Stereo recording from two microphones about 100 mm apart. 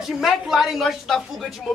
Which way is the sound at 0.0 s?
Centre (ahead or behind).